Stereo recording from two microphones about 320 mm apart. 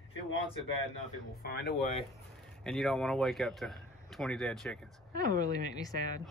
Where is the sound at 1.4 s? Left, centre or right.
Left.